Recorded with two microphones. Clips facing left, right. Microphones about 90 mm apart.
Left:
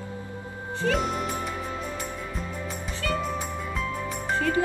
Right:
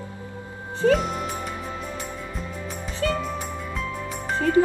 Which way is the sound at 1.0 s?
Centre (ahead or behind).